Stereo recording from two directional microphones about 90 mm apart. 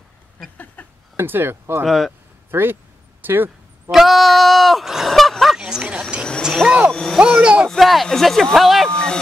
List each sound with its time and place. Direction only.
0.8 s a sound: 15° left (ahead or behind)
1.1 s speech: 25° right (ahead or behind)
1.9 s speech: centre (ahead or behind)
2.5 s a sound: 25° right (ahead or behind)
3.9 s speech: centre (ahead or behind)
5.6 s speech: 10° right (ahead or behind)
6.9 s speech: 5° left (ahead or behind)
7.2 s speech: 10° right (ahead or behind)
7.7 s speech: centre (ahead or behind)